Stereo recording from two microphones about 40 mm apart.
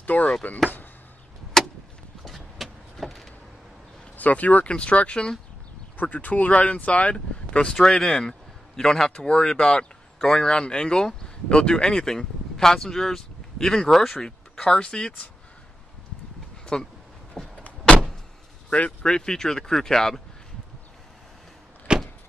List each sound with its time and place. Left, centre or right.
0.0 s speech: left
1.6 s vehicle: centre
4.2 s speech: left
6.1 s speech: left
7.6 s a man's voice: centre
14.6 s speech: left
16.7 s speech: left
17.4 s vehicle: left
18.9 s a man's voice: centre
21.9 s vehicle: right